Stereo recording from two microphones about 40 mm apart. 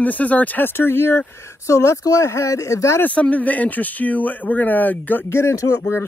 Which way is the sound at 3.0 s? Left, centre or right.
Left.